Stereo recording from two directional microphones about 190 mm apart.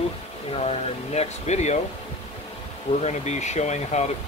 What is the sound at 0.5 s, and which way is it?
Speech, 35° left (ahead or behind).